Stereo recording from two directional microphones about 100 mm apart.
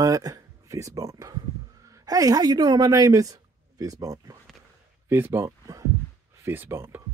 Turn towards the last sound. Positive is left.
turn(degrees=-20)  # may be behind; listen again after turning